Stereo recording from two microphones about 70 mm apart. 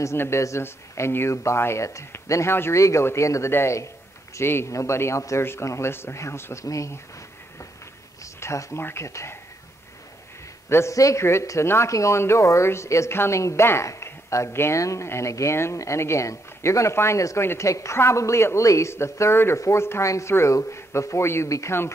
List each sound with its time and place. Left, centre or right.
0.0 s speech: left
8.2 s a sound: left
8.8 s speech: left
10.7 s speech: left
11.0 s speech: left